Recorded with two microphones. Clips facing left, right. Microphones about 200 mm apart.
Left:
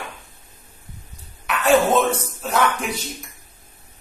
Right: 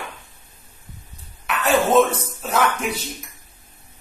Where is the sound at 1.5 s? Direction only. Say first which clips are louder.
Even; centre (ahead or behind).